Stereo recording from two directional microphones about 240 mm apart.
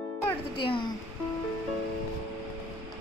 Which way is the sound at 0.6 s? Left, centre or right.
Left.